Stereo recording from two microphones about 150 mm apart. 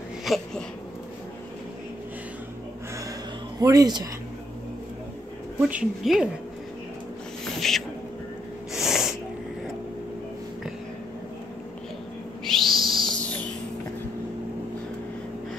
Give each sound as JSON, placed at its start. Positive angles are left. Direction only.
{"t": 0.2, "sound": "speech", "side_deg": 0}
{"t": 3.5, "sound": "speech", "side_deg": -25}
{"t": 5.6, "sound": "speech", "side_deg": -10}
{"t": 7.6, "sound": "a sound", "side_deg": 5}
{"t": 8.7, "sound": "snort", "side_deg": -5}
{"t": 12.4, "sound": "owl", "side_deg": 0}